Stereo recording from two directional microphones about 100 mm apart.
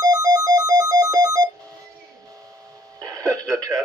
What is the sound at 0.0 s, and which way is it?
Ringtone, 35° right (ahead or behind).